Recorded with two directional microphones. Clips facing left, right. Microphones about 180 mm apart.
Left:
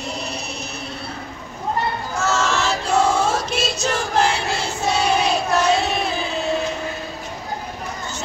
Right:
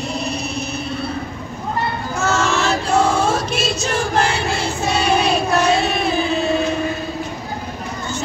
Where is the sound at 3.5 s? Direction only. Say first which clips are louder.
Right 2 dB; 55° right (ahead or behind).